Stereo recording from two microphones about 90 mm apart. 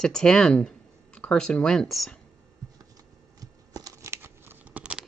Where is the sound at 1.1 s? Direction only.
10° left (ahead or behind).